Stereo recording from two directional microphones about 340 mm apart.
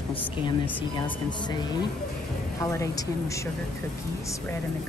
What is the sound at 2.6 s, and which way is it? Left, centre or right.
Speech, centre.